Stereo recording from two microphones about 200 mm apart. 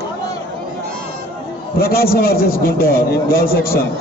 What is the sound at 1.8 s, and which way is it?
A man's voice, 50° left (ahead or behind).